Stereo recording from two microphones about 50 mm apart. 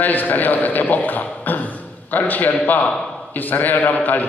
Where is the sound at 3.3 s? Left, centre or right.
Left.